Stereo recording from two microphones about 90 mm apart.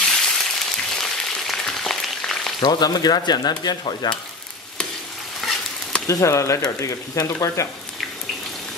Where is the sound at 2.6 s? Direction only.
50° left (ahead or behind).